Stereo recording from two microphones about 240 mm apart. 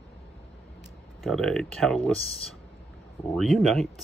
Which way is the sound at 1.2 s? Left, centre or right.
Centre.